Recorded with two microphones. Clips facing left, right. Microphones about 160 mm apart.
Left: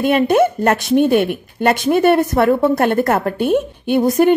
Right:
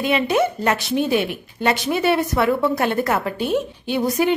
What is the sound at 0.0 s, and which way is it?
A woman's voice, 50° left (ahead or behind).